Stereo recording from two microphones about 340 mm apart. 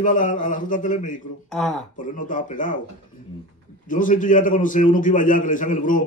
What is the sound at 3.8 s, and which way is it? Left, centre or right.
A man's voice, left.